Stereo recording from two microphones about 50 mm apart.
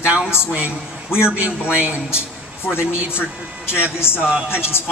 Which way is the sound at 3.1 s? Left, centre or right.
Left.